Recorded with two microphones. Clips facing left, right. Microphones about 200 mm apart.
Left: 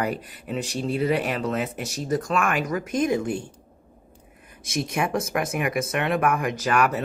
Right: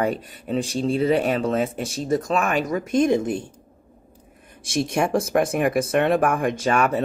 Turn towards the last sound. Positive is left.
turn(degrees=-25)  # may be behind; listen again after turning